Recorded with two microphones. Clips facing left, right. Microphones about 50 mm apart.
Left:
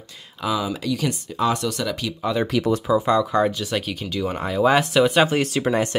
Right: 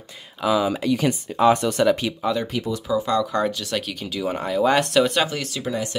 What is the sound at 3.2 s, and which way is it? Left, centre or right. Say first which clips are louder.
Speech: left 2 dB; centre.